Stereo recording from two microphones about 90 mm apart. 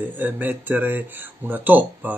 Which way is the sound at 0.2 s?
20° right (ahead or behind).